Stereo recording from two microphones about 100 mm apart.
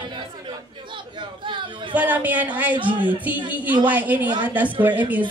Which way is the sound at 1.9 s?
15° right (ahead or behind).